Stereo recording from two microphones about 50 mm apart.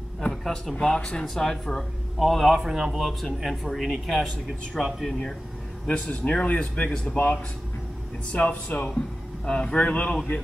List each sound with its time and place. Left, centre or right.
0.4 s speech: centre
0.7 s speech: centre
3.1 s speech: centre
4.8 s speech: centre
5.9 s speech: left
8.3 s speech: left